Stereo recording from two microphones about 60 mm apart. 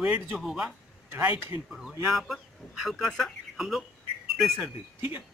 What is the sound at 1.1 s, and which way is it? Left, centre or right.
Speech, right.